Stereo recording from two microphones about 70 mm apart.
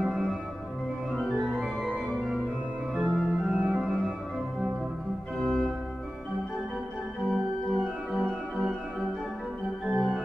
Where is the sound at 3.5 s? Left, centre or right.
Right.